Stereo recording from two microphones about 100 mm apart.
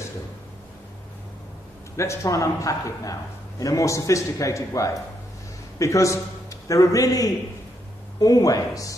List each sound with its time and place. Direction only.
2.0 s a man's voice: 30° left (ahead or behind)